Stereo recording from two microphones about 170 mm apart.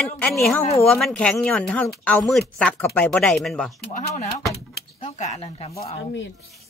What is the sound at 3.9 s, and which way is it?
Speech, 50° left (ahead or behind).